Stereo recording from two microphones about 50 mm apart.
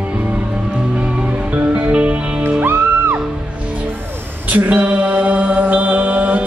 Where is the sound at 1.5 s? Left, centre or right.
Right.